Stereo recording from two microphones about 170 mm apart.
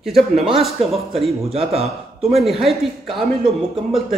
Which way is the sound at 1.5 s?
35° right (ahead or behind).